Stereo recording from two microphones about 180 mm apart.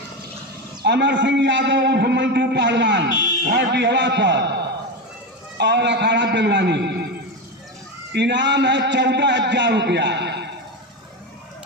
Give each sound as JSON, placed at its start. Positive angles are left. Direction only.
{"t": 0.8, "sound": "a man's voice", "side_deg": -85}
{"t": 3.4, "sound": "a man's voice", "side_deg": -70}
{"t": 5.6, "sound": "a man's voice", "side_deg": -75}
{"t": 8.1, "sound": "a man's voice", "side_deg": -80}